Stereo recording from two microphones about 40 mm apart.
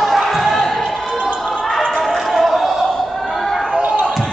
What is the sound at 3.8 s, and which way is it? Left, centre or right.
Basketball bounce, right.